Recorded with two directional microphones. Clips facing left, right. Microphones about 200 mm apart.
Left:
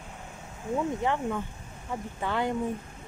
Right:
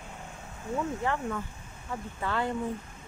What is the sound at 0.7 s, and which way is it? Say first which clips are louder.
Speech: left 3 dB; 15° left (ahead or behind).